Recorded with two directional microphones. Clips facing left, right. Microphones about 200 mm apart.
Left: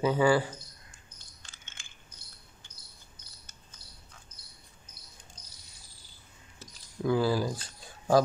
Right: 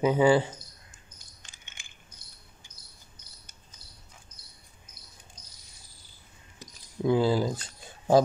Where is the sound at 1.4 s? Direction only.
15° right (ahead or behind).